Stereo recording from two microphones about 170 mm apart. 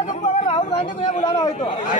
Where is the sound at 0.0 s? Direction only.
40° left (ahead or behind).